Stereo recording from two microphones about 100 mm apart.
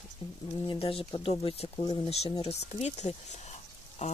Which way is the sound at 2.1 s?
90° left.